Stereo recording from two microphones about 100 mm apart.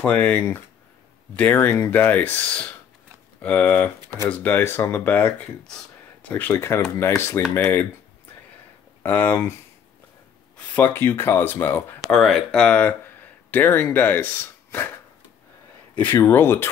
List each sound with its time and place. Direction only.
0.0 s speech: 15° left (ahead or behind)
9.0 s speech: 20° left (ahead or behind)
10.7 s speech: 20° left (ahead or behind)
12.0 s speech: centre (ahead or behind)
12.5 s speech: 10° left (ahead or behind)
16.2 s speech: 20° left (ahead or behind)